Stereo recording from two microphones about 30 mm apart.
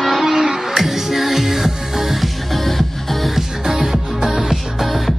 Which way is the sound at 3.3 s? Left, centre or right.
Centre.